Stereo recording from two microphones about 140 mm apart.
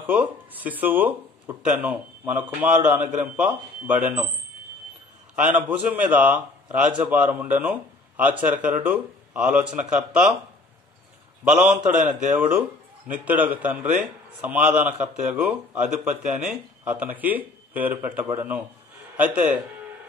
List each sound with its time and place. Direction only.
0.0 s speech: 15° right (ahead or behind)
5.5 s speech: 10° right (ahead or behind)
11.5 s speech: 10° right (ahead or behind)
11.9 s a man's voice: 65° right (ahead or behind)
13.1 s speech: 10° right (ahead or behind)